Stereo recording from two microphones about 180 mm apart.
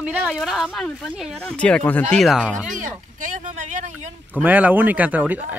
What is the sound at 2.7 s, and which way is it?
Speech, 45° right (ahead or behind).